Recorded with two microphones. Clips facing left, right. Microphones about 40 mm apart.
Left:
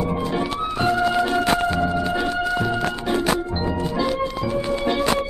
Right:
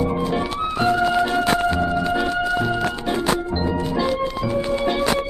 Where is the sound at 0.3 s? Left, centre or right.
Centre.